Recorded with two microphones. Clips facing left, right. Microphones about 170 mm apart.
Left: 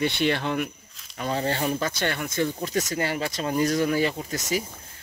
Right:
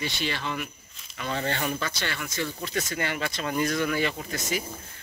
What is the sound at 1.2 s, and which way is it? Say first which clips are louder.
Speech: left 3 dB; 35° left (ahead or behind).